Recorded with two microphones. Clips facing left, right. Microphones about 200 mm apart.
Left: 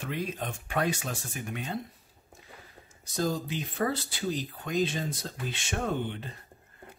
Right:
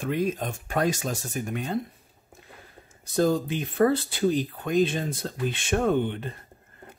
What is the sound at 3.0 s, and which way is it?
Speech, 55° right (ahead or behind).